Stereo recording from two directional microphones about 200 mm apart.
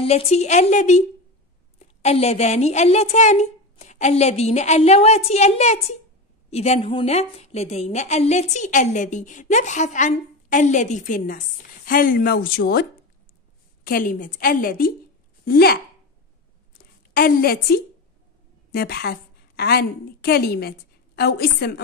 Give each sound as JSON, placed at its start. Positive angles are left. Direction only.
{"t": 0.0, "sound": "a woman's voice", "side_deg": 30}
{"t": 13.8, "sound": "a woman's voice", "side_deg": 45}
{"t": 16.7, "sound": "a sound", "side_deg": 50}
{"t": 18.7, "sound": "a woman's voice", "side_deg": 50}